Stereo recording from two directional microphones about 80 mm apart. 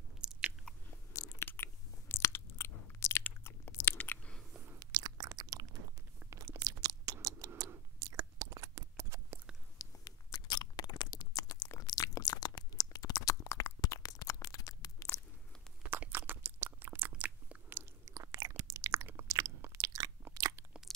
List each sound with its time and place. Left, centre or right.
0.2 s biting: centre
1.1 s crunch: left
4.0 s a sound: centre
4.7 s chewing: right
6.3 s a sound: right
8.0 s chewing: right
9.8 s chewing: left
13.5 s a sound: left
13.7 s a sound: left
15.8 s chewing: right
18.1 s chewing: right
19.2 s chewing: right
20.3 s crunch: right